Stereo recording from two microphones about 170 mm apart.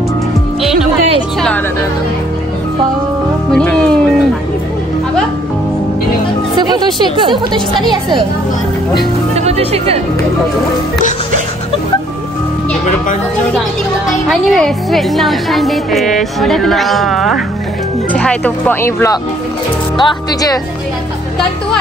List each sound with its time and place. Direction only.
3.5 s music: 5° left (ahead or behind)
6.7 s a woman's voice: 25° right (ahead or behind)
9.3 s music: 40° right (ahead or behind)
14.3 s a woman's voice: centre (ahead or behind)
20.0 s speech: 25° left (ahead or behind)